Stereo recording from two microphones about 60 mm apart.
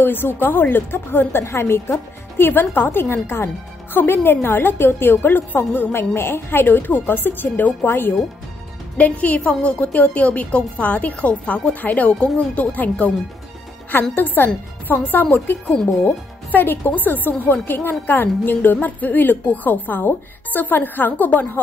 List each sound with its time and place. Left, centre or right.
0.0 s speech: left
8.9 s a woman's voice: left
14.1 s speech: left